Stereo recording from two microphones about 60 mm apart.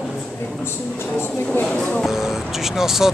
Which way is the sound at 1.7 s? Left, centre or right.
Left.